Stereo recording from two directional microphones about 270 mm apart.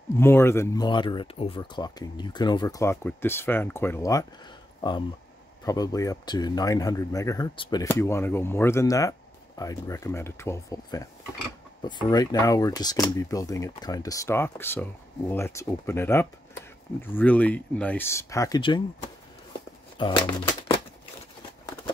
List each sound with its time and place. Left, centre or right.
0.1 s speech: centre
5.7 s speech: centre
20.0 s speech: centre